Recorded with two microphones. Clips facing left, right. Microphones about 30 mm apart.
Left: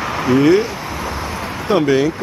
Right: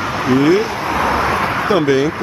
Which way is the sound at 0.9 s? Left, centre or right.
Right.